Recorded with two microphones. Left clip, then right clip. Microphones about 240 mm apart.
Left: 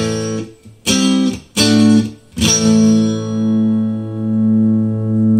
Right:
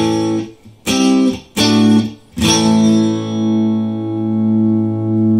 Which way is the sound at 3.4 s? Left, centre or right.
Left.